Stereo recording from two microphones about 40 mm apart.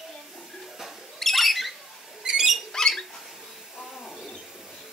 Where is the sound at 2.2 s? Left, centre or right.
Centre.